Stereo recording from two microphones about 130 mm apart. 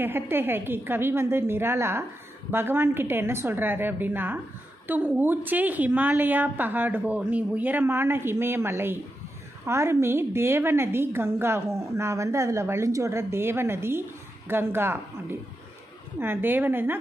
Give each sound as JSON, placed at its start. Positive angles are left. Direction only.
{"t": 0.0, "sound": "a woman's voice", "side_deg": -15}